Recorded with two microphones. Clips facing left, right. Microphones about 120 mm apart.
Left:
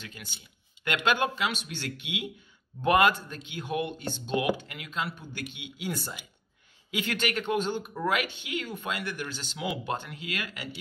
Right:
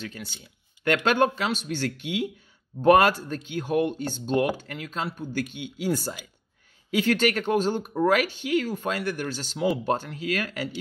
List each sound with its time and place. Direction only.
0.8 s speech: 45° right (ahead or behind)